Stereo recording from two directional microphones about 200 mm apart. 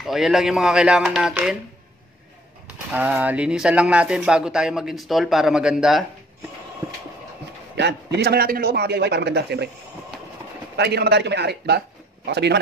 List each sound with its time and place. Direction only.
0.0 s speech: centre (ahead or behind)
2.9 s speech: 10° right (ahead or behind)
7.7 s a man's voice: 60° right (ahead or behind)
10.8 s a man's voice: 55° right (ahead or behind)